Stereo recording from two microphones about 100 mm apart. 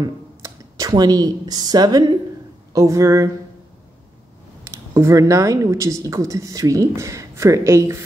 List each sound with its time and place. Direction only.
0.0 s speech: 35° right (ahead or behind)
4.9 s speech: 30° right (ahead or behind)